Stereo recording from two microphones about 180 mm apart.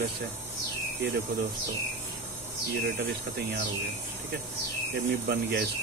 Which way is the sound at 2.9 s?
60° right (ahead or behind).